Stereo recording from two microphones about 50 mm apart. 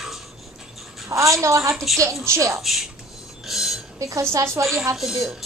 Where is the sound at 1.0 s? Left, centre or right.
Right.